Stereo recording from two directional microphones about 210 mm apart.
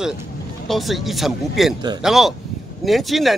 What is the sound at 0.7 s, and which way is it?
Speech, centre (ahead or behind).